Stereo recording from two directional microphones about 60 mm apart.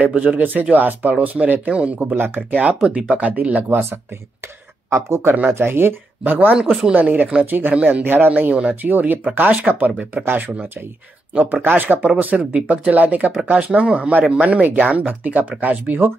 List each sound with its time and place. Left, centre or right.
0.0 s speech: right
2.5 s speech: right